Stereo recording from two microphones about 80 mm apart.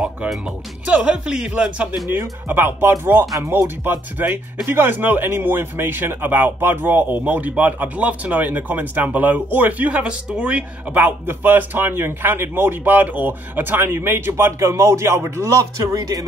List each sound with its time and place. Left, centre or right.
0.8 s speech: centre
2.0 s speech: right